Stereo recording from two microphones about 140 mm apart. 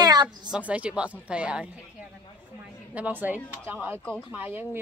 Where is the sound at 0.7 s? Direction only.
10° right (ahead or behind).